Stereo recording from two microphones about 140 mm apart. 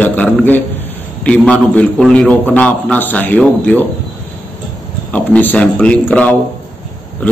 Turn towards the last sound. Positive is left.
turn(degrees=10)  # may be behind; listen again after turning